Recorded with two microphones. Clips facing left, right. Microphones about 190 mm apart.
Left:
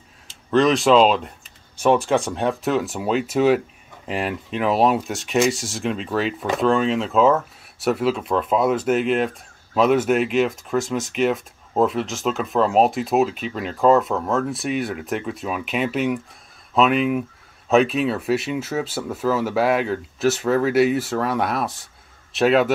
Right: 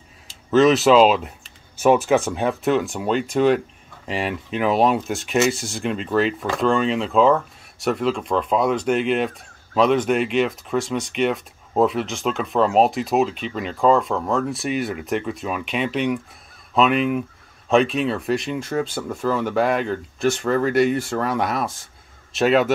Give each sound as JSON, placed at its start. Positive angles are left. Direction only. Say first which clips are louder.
{"t": 0.3, "sound": "speech", "louder": "right 2 dB", "side_deg": 0}